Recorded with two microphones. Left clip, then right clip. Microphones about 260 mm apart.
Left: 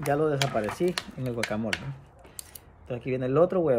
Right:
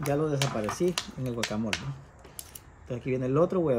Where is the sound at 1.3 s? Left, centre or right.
Left.